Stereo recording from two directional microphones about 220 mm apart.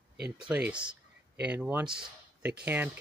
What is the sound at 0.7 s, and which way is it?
Speech, 5° right (ahead or behind).